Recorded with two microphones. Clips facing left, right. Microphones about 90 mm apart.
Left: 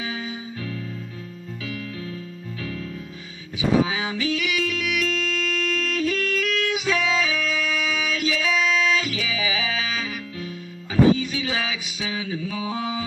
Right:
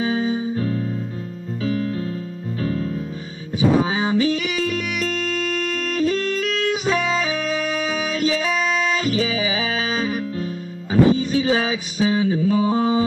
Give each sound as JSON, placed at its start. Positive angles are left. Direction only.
{"t": 0.0, "sound": "music", "side_deg": -35}